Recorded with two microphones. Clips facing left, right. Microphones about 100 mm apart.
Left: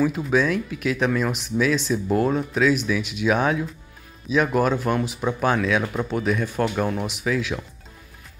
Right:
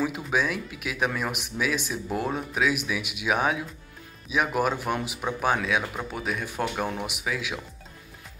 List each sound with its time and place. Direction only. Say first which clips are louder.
0.0 s speech: left 6 dB; 10° right (ahead or behind)